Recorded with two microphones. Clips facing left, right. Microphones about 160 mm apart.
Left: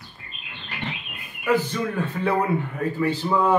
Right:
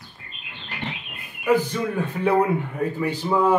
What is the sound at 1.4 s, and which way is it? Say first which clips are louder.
Speech: right 2 dB; 15° right (ahead or behind).